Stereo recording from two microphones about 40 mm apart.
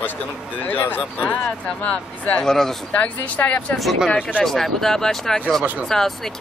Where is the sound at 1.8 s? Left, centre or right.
Left.